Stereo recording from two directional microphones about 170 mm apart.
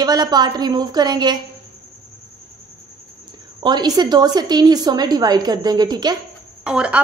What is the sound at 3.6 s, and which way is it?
A woman's voice, 25° right (ahead or behind).